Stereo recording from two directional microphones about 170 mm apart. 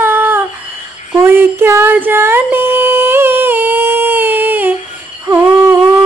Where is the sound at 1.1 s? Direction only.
15° right (ahead or behind).